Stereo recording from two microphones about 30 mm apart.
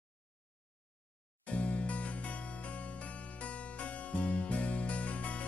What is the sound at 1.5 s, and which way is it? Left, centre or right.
Music, left.